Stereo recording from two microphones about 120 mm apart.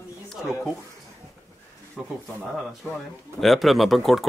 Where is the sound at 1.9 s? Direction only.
Centre (ahead or behind).